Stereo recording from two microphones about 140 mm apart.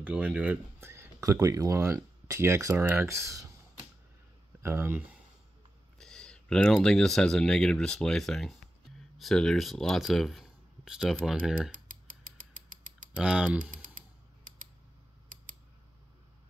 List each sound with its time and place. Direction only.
0.0 s speech: 10° right (ahead or behind)
4.6 s speech: 15° right (ahead or behind)
5.9 s speech: 5° left (ahead or behind)
11.7 s creak: 75° right (ahead or behind)
13.1 s speech: 5° right (ahead or behind)